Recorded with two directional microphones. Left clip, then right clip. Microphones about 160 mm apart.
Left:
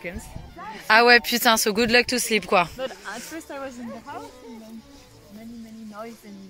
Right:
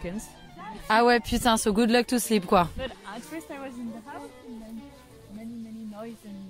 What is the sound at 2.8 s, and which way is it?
Snake, 20° right (ahead or behind).